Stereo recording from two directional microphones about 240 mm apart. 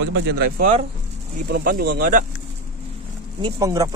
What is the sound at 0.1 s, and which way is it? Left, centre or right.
A man's voice, right.